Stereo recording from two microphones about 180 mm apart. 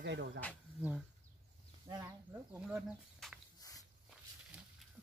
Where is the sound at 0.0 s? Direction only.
85° right.